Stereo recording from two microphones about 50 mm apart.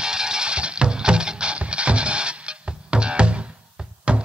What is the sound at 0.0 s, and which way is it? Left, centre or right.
Music, centre.